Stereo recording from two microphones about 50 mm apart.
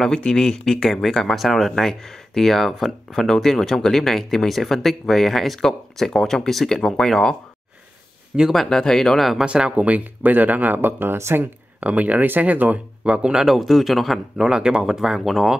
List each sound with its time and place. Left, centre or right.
0.0 s speech: centre
8.5 s speech: centre
9.4 s speech: centre; by 11.4 s right
11.8 s speech: right
13.0 s speech: right
13.5 s speech: centre
14.4 s speech: centre